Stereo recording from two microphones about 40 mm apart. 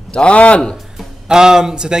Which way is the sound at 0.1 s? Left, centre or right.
Left.